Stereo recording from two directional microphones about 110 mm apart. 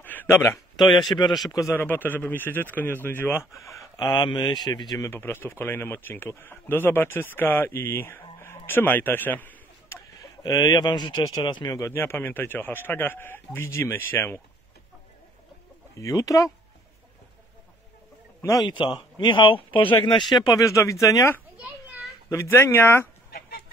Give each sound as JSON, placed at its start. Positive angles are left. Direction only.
{"t": 0.0, "sound": "a sound", "side_deg": 15}
{"t": 0.7, "sound": "speech", "side_deg": 0}
{"t": 1.5, "sound": "speech", "side_deg": 30}
{"t": 1.9, "sound": "speech", "side_deg": 15}
{"t": 10.4, "sound": "speech", "side_deg": 35}
{"t": 11.9, "sound": "speech", "side_deg": 20}
{"t": 16.0, "sound": "speech", "side_deg": 30}
{"t": 18.4, "sound": "a man's voice", "side_deg": 30}
{"t": 18.7, "sound": "speech", "side_deg": 40}
{"t": 20.4, "sound": "speech", "side_deg": 30}